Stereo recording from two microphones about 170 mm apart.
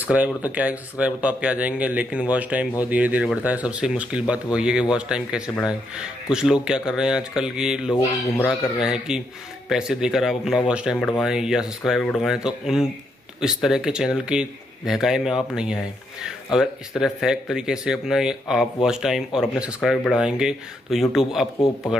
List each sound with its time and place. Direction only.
0.0 s speech: 10° right (ahead or behind)
8.4 s speech: 5° left (ahead or behind)
8.8 s speech: 5° right (ahead or behind)